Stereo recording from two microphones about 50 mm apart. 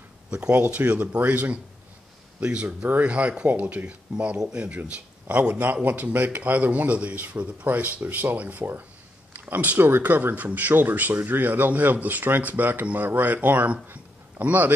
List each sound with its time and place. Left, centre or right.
0.3 s speech: right